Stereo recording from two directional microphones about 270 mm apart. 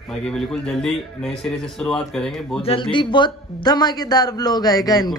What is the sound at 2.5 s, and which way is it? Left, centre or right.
A man's voice, left.